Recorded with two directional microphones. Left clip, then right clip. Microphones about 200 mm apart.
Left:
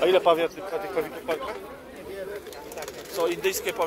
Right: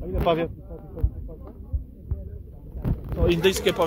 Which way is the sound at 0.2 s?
25° left (ahead or behind).